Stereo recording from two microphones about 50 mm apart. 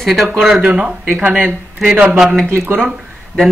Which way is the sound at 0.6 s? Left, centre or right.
Right.